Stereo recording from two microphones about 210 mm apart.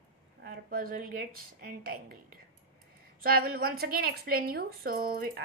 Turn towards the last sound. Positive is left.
turn(degrees=-45)  # may be behind; listen again after turning